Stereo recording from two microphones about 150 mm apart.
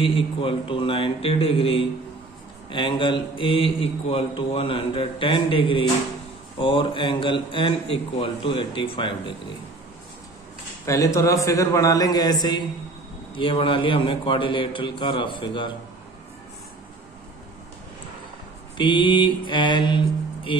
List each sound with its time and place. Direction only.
0.0 s a man's voice: 35° left (ahead or behind)
10.9 s a man's voice: 20° left (ahead or behind)
18.8 s a man's voice: 35° left (ahead or behind)